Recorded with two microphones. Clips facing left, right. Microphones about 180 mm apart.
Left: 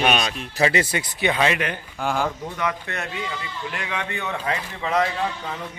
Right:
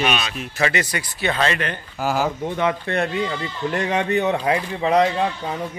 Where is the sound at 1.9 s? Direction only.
5° right (ahead or behind).